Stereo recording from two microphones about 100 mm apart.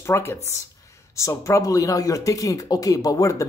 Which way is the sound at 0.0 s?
25° left (ahead or behind).